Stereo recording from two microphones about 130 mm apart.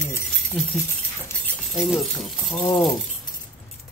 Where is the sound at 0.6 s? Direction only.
5° left (ahead or behind).